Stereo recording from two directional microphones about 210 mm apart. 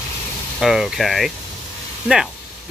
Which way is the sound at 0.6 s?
Centre (ahead or behind).